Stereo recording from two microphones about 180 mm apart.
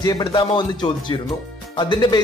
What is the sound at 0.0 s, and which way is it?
Speech, 25° left (ahead or behind).